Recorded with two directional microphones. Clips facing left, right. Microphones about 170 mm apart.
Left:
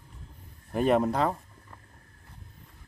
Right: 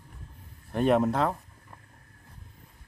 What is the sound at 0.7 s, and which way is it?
Speech, centre (ahead or behind).